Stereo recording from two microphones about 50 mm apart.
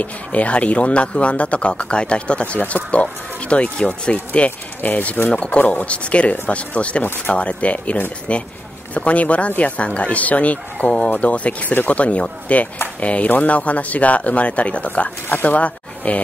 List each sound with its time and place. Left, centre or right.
0.0 s speech: left
5.3 s speech: left